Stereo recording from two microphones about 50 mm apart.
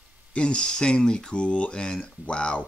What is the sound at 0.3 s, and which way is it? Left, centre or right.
Speech, left.